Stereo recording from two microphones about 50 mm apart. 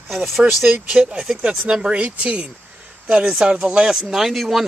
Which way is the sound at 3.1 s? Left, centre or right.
Centre.